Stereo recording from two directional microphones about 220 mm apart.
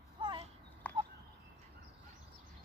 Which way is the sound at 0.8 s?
5° left (ahead or behind).